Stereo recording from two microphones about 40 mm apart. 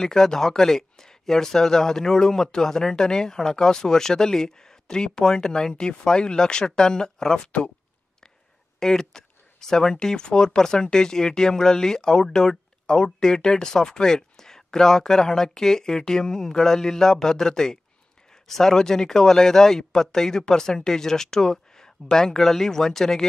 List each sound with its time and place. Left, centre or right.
0.0 s speech: centre
8.7 s speech: centre